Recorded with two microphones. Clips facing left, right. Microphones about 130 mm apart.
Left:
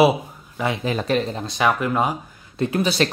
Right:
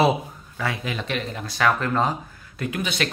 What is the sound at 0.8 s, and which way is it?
Speech, 35° left (ahead or behind).